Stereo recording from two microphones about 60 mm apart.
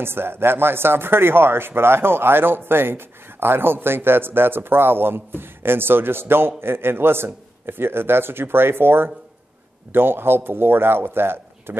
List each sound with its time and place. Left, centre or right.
0.0 s speech: right